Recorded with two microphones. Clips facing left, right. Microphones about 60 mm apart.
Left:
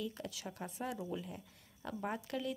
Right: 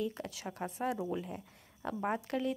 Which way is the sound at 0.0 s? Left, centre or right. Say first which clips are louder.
Right 5 dB; right.